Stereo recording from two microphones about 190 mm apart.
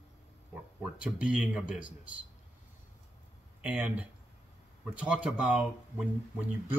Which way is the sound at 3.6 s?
5° right (ahead or behind).